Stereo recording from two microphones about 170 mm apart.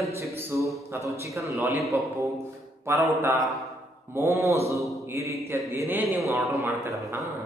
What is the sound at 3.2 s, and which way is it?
A man's voice, 15° right (ahead or behind).